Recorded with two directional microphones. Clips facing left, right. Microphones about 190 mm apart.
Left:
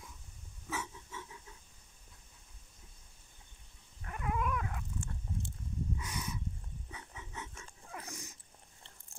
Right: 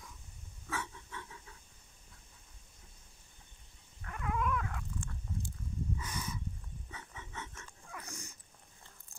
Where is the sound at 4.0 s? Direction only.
20° left (ahead or behind).